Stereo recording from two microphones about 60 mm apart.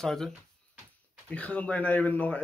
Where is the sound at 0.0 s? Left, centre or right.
Centre.